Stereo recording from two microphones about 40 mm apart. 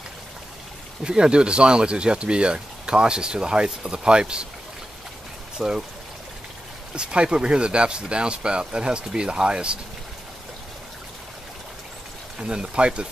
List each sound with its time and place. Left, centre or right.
1.0 s speech: right
5.6 s speech: centre
7.0 s speech: right
12.4 s speech: right